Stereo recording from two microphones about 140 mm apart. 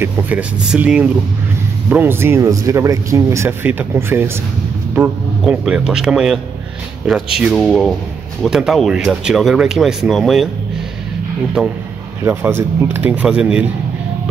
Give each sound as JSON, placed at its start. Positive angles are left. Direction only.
{"t": 0.0, "sound": "speech", "side_deg": -10}
{"t": 11.6, "sound": "speech", "side_deg": 0}
{"t": 12.3, "sound": "speech", "side_deg": -15}